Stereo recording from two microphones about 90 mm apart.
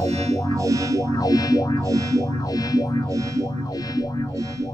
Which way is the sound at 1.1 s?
45° left (ahead or behind).